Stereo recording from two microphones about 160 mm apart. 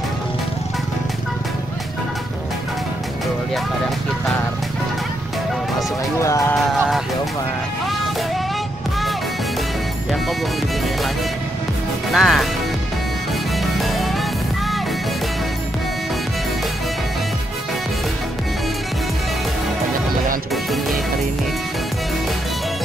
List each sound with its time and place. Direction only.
6.2 s speech: 20° left (ahead or behind)
6.5 s music: centre (ahead or behind)
12.1 s music: centre (ahead or behind)
13.6 s music: centre (ahead or behind)